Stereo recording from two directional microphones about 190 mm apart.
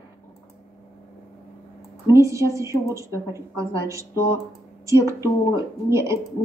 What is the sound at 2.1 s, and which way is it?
A woman's voice, 15° right (ahead or behind).